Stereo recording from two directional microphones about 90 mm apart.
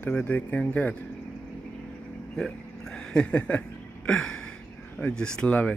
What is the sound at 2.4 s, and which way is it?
Speech, 5° left (ahead or behind).